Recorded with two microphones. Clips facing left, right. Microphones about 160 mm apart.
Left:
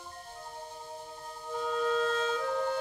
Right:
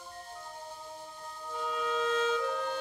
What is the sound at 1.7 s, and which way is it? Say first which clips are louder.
Music: left 2 dB; 35° left (ahead or behind).